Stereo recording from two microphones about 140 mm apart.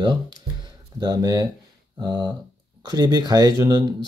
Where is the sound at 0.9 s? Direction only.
30° right (ahead or behind).